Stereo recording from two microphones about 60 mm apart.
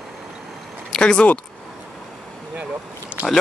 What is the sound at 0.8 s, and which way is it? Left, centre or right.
Speech, centre.